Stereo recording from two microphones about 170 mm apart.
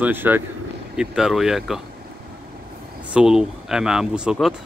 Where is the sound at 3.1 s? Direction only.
5° right (ahead or behind).